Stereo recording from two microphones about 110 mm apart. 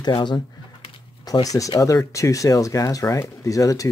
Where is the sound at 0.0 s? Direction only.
45° left (ahead or behind).